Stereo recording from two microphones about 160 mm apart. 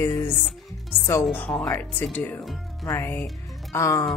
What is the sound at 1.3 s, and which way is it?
A woman's voice, 10° left (ahead or behind).